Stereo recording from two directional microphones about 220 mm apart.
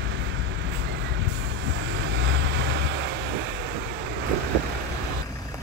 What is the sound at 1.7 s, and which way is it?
Vehicle, 55° right (ahead or behind).